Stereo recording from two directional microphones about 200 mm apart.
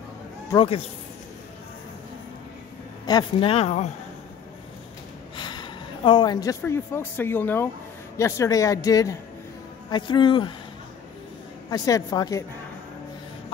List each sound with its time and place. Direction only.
0.5 s speech: 25° left (ahead or behind)
3.1 s speech: 25° left (ahead or behind)
5.3 s speech: 20° left (ahead or behind)
11.7 s speech: 15° left (ahead or behind)